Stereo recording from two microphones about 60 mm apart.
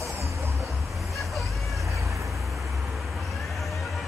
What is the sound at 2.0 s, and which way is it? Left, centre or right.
Vehicle, right.